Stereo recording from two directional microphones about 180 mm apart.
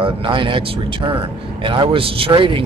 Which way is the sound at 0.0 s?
30° right (ahead or behind).